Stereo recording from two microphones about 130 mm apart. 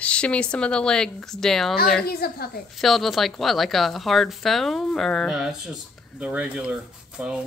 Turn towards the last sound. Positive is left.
turn(degrees=-10)  # may be behind; listen again after turning